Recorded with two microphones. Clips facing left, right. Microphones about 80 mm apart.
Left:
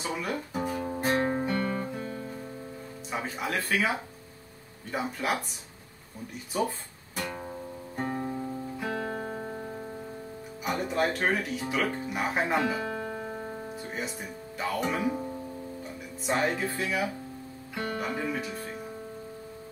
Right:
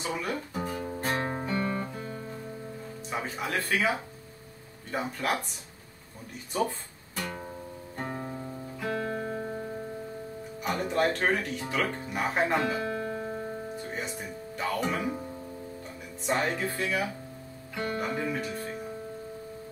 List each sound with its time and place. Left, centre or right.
0.0 s speech: centre
0.5 s music: centre
0.8 s music: centre
1.3 s music: centre
3.1 s speech: centre
4.9 s speech: centre
8.1 s music: centre
8.9 s music: left
10.8 s speech: centre
16.3 s speech: centre